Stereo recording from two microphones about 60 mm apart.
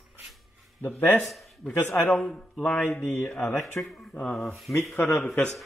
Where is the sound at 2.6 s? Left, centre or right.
Left.